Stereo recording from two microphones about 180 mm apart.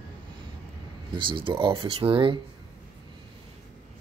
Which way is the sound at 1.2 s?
25° right (ahead or behind).